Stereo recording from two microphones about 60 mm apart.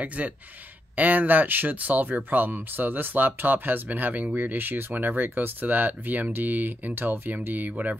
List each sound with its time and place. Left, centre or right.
0.0 s speech: right